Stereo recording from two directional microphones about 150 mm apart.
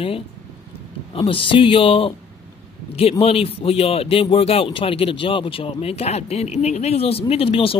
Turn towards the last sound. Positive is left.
turn(degrees=40)  # may be behind; listen again after turning